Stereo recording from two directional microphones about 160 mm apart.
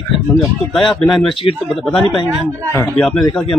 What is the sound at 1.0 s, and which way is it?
Speech, centre (ahead or behind).